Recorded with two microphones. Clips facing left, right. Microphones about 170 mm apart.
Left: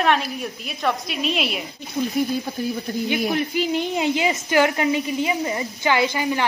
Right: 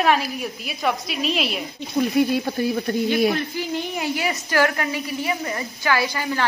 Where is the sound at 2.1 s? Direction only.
75° right (ahead or behind).